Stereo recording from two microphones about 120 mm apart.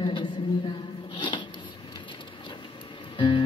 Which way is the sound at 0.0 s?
40° left (ahead or behind).